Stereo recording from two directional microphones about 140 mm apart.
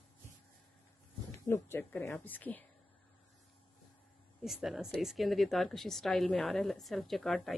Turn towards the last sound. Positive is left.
turn(degrees=0)  # may be behind; listen again after turning